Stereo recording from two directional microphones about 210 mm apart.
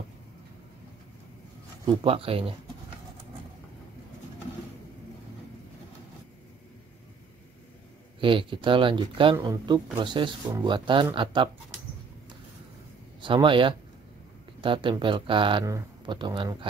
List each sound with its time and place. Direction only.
2.0 s speech: 25° right (ahead or behind)
8.2 s speech: 25° right (ahead or behind)
13.2 s speech: 25° right (ahead or behind)